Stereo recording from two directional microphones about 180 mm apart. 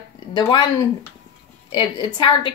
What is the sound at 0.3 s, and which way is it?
Speech, 25° left (ahead or behind).